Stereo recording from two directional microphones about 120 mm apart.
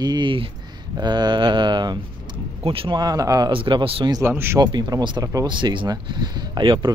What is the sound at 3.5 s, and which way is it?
Speech, 45° right (ahead or behind).